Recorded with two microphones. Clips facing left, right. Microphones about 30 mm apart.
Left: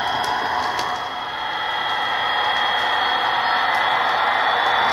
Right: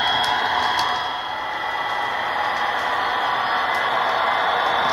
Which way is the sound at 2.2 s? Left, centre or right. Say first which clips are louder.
Left 2 dB; left.